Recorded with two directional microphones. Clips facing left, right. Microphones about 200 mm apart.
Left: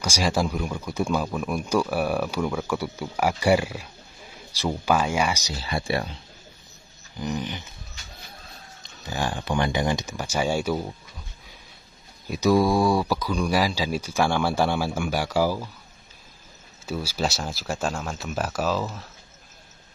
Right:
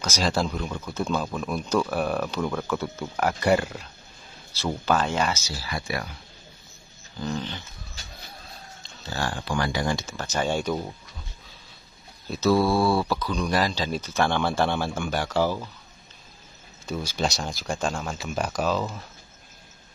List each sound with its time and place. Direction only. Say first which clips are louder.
0.0 s speech: left 1 dB; 10° left (ahead or behind); by 6.1 s 30° left (ahead or behind)
7.2 s speech: left 1 dB; 15° left (ahead or behind)
8.8 s speech: left 2 dB; 15° left (ahead or behind)
12.3 s speech: left 1 dB; 15° left (ahead or behind)
16.8 s speech: even; 5° left (ahead or behind)